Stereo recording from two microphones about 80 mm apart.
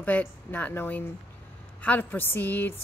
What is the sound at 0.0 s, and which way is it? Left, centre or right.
A woman's voice, centre.